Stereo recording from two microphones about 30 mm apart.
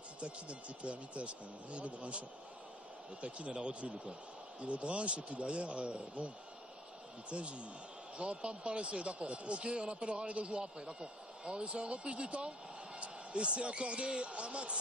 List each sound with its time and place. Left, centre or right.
0.2 s a man's voice: right
4.6 s a man's voice: right